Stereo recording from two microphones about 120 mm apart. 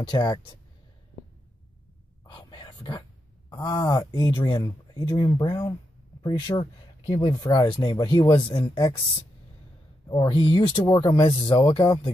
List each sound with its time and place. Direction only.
0.0 s speech: 40° left (ahead or behind)
2.2 s whispering: 40° left (ahead or behind)
3.4 s speech: 35° left (ahead or behind)
6.6 s speech: 45° left (ahead or behind)
10.0 s speech: 45° left (ahead or behind)